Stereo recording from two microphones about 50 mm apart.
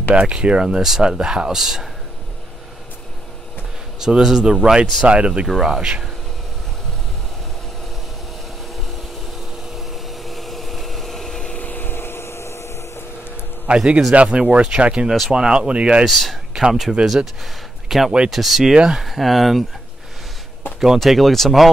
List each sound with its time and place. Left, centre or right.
0.1 s speech: right; by 1.9 s centre
4.0 s speech: centre
5.5 s speech: centre
5.8 s speech: centre
9.8 s a sound: centre
11.5 s a sound: left
13.7 s speech: right
15.0 s speech: centre
15.3 s speech: centre
16.1 s speech: centre
21.0 s speech: centre